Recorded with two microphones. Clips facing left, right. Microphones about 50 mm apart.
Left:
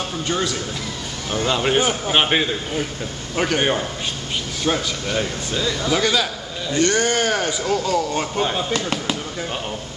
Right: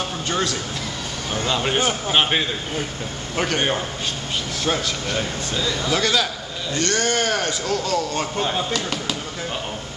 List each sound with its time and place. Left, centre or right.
0.3 s a man's voice: centre
8.7 s speech: centre